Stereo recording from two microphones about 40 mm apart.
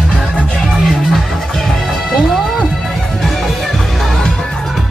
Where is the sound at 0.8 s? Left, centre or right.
Centre.